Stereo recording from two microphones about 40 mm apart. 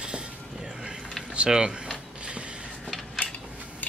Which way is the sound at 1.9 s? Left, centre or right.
Right.